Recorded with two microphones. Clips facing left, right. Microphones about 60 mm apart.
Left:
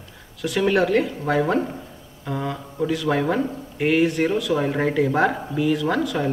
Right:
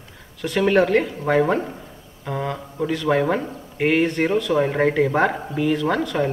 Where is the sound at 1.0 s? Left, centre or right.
Centre.